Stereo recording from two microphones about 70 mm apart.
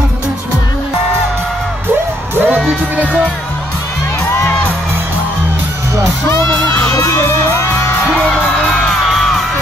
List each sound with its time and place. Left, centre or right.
2.3 s music: right
6.9 s crowd: left